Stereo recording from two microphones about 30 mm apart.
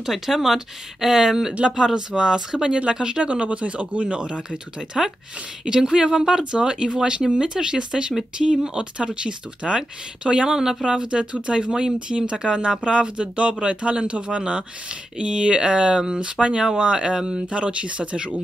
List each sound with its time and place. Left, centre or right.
0.0 s speech: centre
2.0 s speech: right
3.3 s speech: right
4.5 s speech: centre
5.7 s speech: right
5.9 s speech: centre
10.6 s speech: centre
10.9 s speech: right
17.5 s speech: right